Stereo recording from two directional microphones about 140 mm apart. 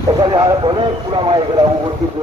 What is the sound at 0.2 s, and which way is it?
Speech, 35° right (ahead or behind).